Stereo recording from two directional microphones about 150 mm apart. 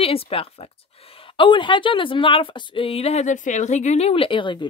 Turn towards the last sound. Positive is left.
turn(degrees=30)  # may be behind; listen again after turning